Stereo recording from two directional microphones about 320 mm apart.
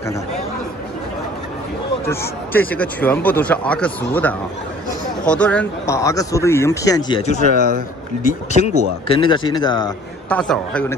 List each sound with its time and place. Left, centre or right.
2.0 s speech: centre
7.5 s a man's voice: right
8.2 s speech: left; by 11.0 s centre